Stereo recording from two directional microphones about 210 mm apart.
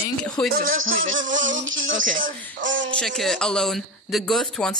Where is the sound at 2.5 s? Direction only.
60° right (ahead or behind).